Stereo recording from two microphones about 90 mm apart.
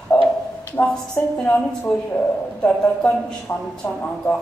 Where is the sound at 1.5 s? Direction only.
15° left (ahead or behind).